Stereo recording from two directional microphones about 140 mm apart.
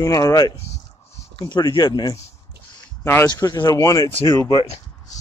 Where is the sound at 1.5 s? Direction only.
30° left (ahead or behind).